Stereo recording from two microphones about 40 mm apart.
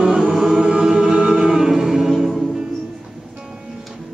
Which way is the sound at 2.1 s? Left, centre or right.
Centre.